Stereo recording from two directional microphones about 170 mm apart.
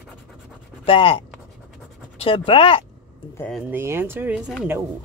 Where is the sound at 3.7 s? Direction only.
15° right (ahead or behind).